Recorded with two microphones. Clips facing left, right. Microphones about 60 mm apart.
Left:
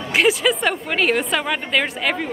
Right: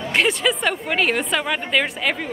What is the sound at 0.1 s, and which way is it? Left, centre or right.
A woman's voice, centre.